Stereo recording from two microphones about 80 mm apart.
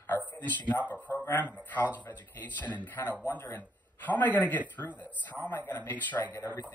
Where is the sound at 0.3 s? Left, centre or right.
Left.